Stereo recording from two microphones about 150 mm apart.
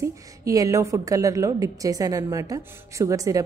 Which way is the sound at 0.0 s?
20° right (ahead or behind).